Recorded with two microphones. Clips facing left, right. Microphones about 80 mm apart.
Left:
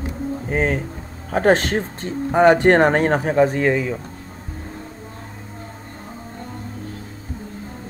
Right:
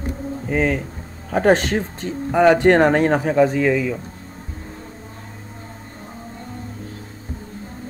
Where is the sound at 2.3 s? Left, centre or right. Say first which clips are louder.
Left 1 dB; left.